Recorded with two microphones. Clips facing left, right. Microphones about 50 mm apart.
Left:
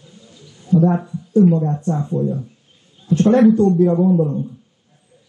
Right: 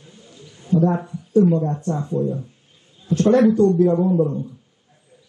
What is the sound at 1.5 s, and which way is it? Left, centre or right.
Speech, left.